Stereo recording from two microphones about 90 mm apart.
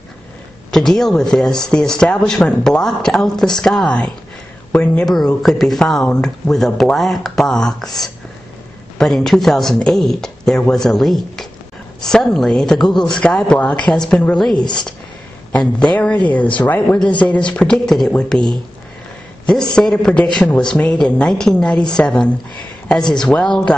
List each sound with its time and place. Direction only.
0.7 s speech: 5° left (ahead or behind)
19.4 s speech: 10° left (ahead or behind)